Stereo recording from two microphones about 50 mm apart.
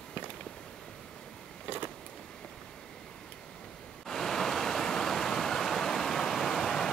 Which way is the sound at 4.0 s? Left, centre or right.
Centre.